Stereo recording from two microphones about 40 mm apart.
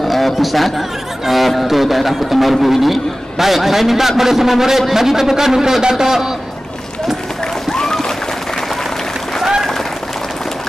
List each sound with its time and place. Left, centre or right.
0.0 s a man's voice: centre
7.7 s splash: centre